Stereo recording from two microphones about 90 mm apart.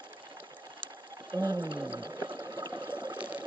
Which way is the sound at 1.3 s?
50° right (ahead or behind).